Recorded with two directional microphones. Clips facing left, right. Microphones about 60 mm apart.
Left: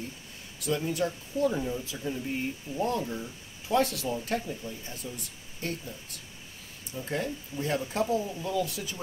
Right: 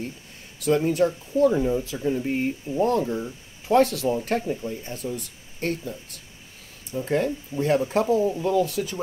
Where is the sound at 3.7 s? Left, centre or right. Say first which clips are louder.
Right 7 dB; right.